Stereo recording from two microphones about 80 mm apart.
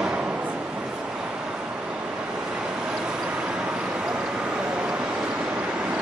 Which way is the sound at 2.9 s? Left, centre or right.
Centre.